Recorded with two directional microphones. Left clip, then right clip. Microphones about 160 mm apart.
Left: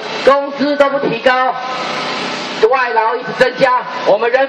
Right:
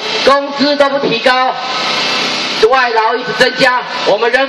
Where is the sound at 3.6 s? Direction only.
5° right (ahead or behind).